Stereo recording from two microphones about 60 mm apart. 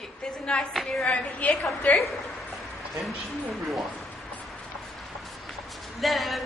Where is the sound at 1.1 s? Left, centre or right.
Left.